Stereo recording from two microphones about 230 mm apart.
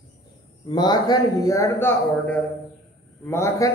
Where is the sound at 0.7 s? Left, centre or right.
Centre.